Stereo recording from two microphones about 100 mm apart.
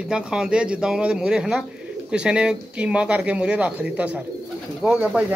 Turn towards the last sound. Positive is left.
turn(degrees=-15)  # may be behind; listen again after turning